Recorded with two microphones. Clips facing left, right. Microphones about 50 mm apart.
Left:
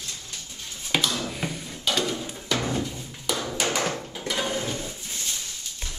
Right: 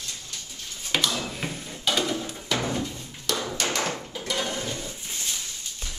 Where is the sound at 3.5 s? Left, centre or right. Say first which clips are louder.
Left 2 dB; centre.